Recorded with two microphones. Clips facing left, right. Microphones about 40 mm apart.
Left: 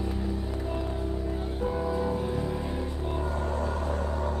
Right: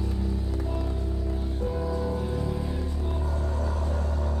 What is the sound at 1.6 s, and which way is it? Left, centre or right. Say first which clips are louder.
Music: left 2 dB; centre.